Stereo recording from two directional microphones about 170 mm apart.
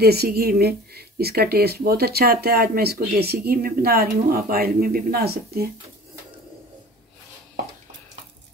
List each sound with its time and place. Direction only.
0.0 s speech: 65° right (ahead or behind)